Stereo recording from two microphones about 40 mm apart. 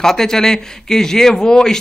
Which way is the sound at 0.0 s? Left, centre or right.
Centre.